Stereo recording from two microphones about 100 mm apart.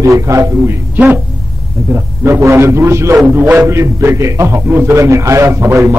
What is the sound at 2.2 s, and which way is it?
A man's voice, 25° right (ahead or behind).